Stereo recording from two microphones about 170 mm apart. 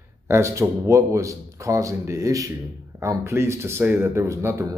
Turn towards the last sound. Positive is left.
turn(degrees=-15)  # may be behind; listen again after turning